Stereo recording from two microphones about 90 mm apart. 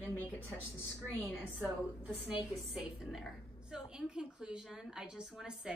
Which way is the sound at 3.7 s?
10° right (ahead or behind).